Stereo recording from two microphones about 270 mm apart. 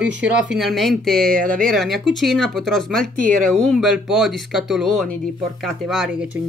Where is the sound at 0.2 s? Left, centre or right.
Centre.